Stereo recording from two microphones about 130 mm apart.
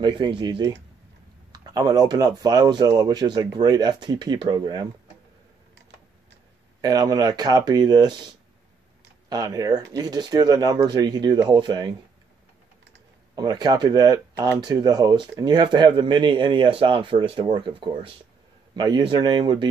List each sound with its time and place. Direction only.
0.0 s speech: 35° right (ahead or behind)
6.8 s speech: 30° right (ahead or behind)
9.3 s speech: 30° right (ahead or behind)
13.3 s speech: 30° right (ahead or behind)